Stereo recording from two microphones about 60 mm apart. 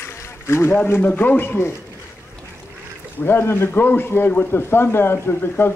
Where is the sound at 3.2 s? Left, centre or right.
Left.